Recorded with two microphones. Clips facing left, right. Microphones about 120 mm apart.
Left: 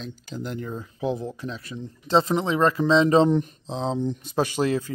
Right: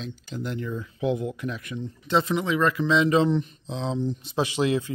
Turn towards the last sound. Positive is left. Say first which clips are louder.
# even
turn(degrees=40)  # may be behind; listen again after turning